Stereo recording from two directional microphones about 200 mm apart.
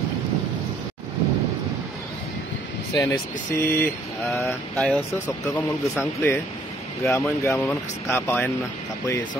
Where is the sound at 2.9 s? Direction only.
15° left (ahead or behind).